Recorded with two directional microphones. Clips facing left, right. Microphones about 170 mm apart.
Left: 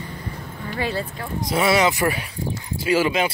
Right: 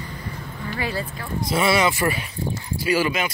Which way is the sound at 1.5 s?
15° left (ahead or behind).